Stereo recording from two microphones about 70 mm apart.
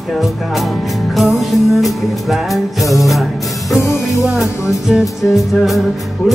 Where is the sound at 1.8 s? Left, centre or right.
Centre.